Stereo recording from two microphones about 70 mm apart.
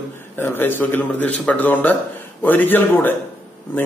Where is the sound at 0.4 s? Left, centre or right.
Left.